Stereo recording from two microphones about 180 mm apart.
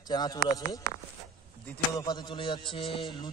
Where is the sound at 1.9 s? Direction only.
20° left (ahead or behind).